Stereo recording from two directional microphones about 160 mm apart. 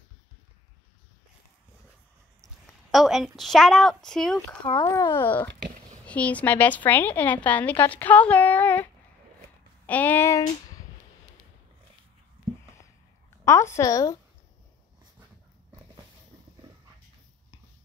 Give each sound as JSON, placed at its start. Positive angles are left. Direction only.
{"t": 2.4, "sound": "a woman's voice", "side_deg": 0}
{"t": 4.6, "sound": "a woman's voice", "side_deg": 25}
{"t": 9.8, "sound": "a woman's voice", "side_deg": 10}
{"t": 10.4, "sound": "a sound", "side_deg": 20}
{"t": 13.5, "sound": "a woman's voice", "side_deg": 15}